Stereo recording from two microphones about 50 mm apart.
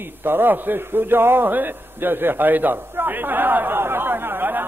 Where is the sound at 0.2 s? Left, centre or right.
Right.